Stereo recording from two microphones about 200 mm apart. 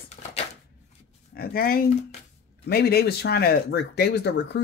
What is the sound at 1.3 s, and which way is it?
Speech, 50° left (ahead or behind).